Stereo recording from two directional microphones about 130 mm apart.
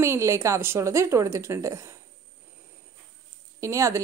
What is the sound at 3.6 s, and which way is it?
Speech, 25° right (ahead or behind).